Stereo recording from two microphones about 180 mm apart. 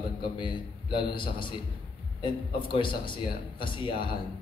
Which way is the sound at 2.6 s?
30° left (ahead or behind).